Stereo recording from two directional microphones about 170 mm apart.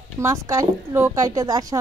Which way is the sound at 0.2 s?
15° right (ahead or behind).